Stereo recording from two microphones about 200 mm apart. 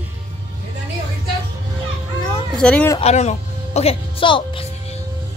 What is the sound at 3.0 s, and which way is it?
Speech, 35° left (ahead or behind).